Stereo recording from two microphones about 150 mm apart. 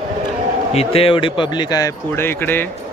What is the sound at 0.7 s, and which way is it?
A man's voice, 40° left (ahead or behind).